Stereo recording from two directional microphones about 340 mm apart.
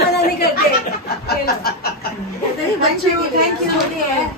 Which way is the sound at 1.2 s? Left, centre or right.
Left.